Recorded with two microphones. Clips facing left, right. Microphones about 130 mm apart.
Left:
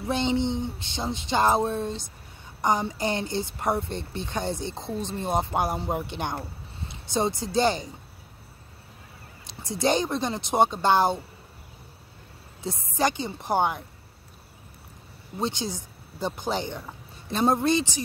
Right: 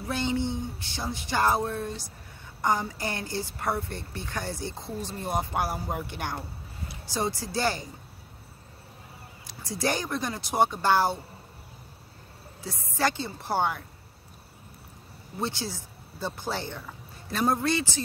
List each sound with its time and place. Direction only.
0.0 s a woman's voice: 20° left (ahead or behind)
9.5 s a woman's voice: 20° left (ahead or behind)
12.9 s speech: 20° left (ahead or behind)
15.3 s speech: 20° left (ahead or behind)